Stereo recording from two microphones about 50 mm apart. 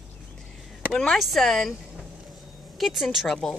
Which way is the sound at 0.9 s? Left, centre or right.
Centre.